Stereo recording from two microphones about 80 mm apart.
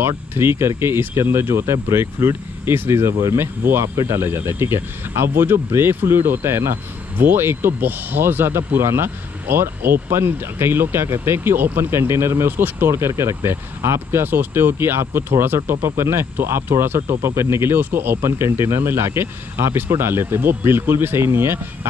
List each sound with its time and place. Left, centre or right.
0.4 s speech: right